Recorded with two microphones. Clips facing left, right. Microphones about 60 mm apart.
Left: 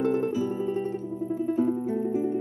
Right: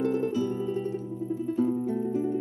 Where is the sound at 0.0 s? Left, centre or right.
Left.